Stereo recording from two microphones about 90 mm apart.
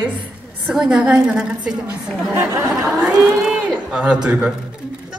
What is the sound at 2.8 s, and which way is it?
A man's voice, 10° right (ahead or behind).